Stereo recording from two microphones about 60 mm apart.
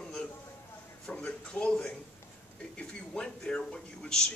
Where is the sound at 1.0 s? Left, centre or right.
Left.